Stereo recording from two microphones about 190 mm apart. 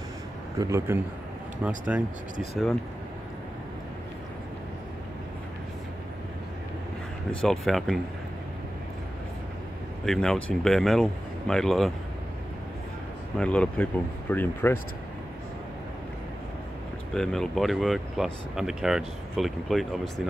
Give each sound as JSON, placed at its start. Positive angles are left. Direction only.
{"t": 0.6, "sound": "speech", "side_deg": -15}
{"t": 7.3, "sound": "speech", "side_deg": 0}
{"t": 10.0, "sound": "speech", "side_deg": 0}
{"t": 13.4, "sound": "speech", "side_deg": 5}
{"t": 17.1, "sound": "speech", "side_deg": 0}